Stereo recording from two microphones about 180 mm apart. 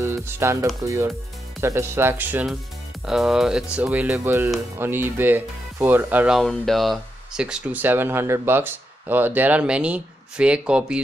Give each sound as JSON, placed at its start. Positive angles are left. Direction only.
{"t": 0.0, "sound": "speech", "side_deg": -15}